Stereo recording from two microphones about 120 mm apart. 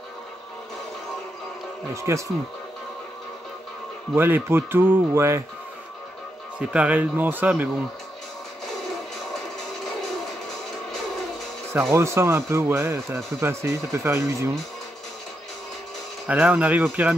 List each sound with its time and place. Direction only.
2.0 s speech: 25° right (ahead or behind)
4.1 s speech: 20° right (ahead or behind)
6.7 s speech: 10° right (ahead or behind)
11.9 s speech: 20° right (ahead or behind)
16.3 s speech: 10° right (ahead or behind)